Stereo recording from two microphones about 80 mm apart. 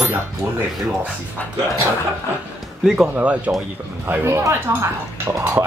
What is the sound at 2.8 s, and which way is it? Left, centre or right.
Speech, centre.